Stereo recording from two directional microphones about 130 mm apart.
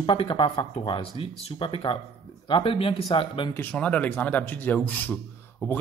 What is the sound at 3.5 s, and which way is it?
Speech, 10° left (ahead or behind).